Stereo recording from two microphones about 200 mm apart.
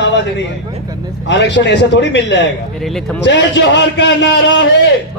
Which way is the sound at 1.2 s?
60° left (ahead or behind).